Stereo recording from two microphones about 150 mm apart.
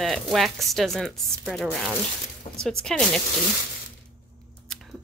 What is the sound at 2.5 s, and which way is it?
Zipper, 35° left (ahead or behind).